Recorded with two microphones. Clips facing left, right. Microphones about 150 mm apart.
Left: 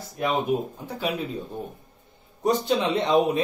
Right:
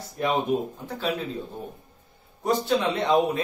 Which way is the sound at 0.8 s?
10° left (ahead or behind).